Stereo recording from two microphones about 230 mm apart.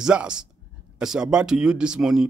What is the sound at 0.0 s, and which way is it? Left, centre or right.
Speech, centre.